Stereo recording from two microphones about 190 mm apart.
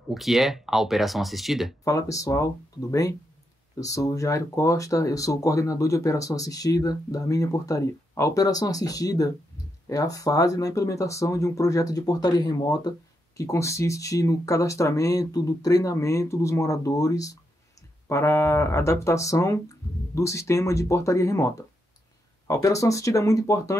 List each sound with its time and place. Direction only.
0.1 s speech: centre (ahead or behind)
1.9 s speech: 15° left (ahead or behind)